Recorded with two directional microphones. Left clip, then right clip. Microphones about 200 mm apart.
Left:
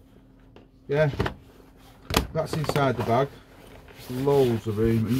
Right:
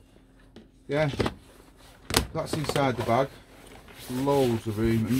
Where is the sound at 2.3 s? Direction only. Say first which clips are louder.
Left 2 dB; 15° right (ahead or behind).